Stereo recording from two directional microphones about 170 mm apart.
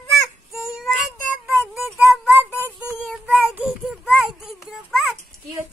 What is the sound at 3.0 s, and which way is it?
Child singing, 5° right (ahead or behind).